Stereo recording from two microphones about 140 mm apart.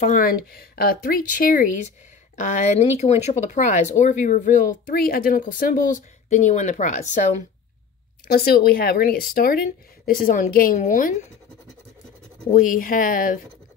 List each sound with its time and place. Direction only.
0.0 s a woman's voice: 80° left
6.2 s speech: 55° left (ahead or behind)
8.3 s a woman's voice: 90° left; by 11.1 s 70° left (ahead or behind)
12.4 s speech: 70° left (ahead or behind)